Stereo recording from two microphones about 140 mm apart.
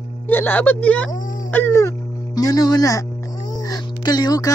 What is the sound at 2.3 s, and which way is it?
Speech, 25° left (ahead or behind).